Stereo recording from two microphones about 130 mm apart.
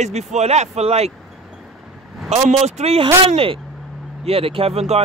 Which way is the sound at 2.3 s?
55° right (ahead or behind).